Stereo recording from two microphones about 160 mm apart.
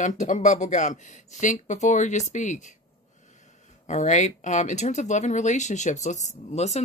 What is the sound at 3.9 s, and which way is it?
Speech, 45° left (ahead or behind).